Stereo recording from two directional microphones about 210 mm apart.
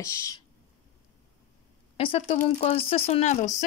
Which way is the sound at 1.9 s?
25° left (ahead or behind).